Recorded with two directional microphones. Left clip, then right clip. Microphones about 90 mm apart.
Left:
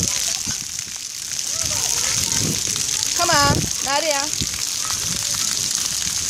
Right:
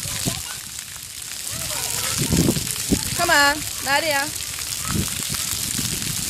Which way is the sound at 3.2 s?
30° right (ahead or behind).